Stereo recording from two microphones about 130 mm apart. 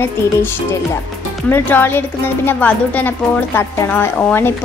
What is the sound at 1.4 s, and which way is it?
A woman's voice, 15° left (ahead or behind).